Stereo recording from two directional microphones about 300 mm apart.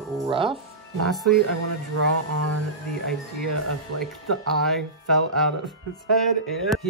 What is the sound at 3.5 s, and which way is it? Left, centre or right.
Speech, right.